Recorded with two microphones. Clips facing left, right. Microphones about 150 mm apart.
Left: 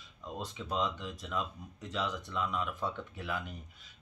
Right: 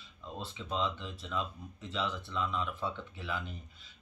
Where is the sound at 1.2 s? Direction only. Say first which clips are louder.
Even; 5° left (ahead or behind).